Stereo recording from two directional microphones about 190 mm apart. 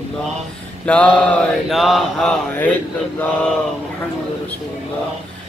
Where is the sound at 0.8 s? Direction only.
5° left (ahead or behind).